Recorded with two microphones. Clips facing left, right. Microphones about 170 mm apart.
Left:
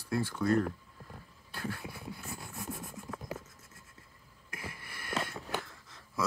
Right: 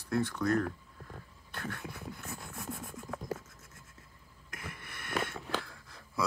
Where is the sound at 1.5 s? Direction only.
5° left (ahead or behind).